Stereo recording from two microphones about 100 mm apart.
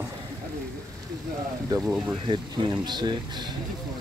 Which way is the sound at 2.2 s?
50° right (ahead or behind).